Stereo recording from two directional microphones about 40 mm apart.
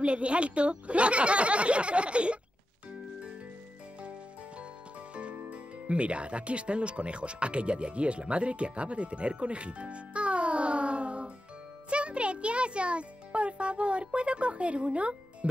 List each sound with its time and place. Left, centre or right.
0.0 s a woman's voice: right
4.0 s music: right
5.5 s a child's voice: right